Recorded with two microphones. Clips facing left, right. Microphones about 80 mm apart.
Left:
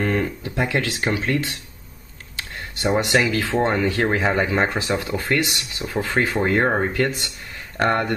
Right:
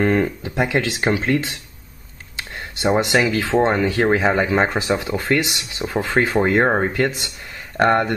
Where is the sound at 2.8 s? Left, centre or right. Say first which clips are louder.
Right 2 dB; centre.